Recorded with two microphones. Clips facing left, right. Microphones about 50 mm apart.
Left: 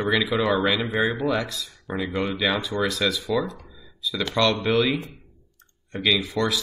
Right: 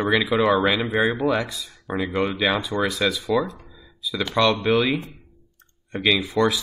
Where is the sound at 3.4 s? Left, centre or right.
Right.